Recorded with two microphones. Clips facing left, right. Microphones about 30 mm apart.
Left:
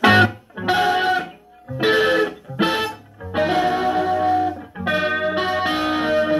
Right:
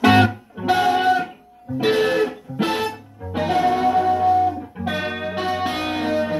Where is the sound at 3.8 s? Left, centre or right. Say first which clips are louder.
Right 2 dB; left.